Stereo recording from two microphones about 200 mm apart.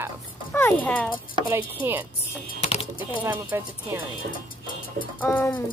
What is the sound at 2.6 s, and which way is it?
Typing, 30° left (ahead or behind).